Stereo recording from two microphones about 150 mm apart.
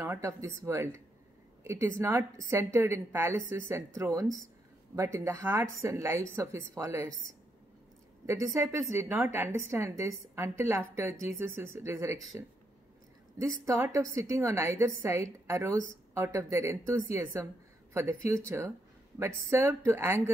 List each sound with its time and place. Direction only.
0.0 s a woman's voice: 20° right (ahead or behind)
8.5 s a woman's voice: 15° right (ahead or behind)